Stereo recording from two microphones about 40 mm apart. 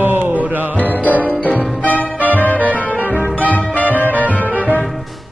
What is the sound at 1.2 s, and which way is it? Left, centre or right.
Music, left.